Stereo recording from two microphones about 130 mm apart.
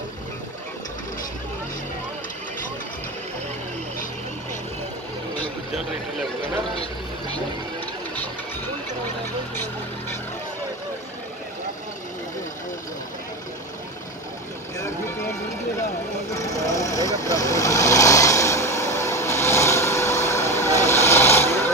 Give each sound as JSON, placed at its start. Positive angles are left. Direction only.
{"t": 16.3, "sound": "vehicle", "side_deg": 25}